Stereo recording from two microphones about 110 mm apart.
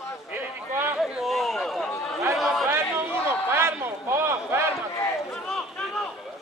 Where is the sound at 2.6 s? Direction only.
20° right (ahead or behind).